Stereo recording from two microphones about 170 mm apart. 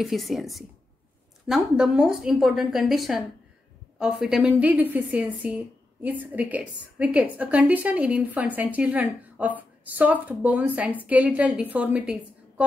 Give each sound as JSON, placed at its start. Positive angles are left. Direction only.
{"t": 0.0, "sound": "a woman's voice", "side_deg": 0}